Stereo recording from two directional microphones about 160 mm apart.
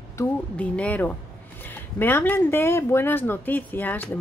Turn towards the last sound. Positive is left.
turn(degrees=10)  # may be behind; listen again after turning